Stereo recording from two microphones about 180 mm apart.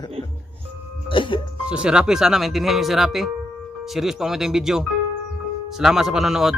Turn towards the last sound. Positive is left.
turn(degrees=0)  # may be behind; listen again after turning